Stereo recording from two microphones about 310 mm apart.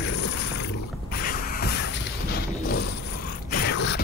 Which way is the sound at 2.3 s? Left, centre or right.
Left.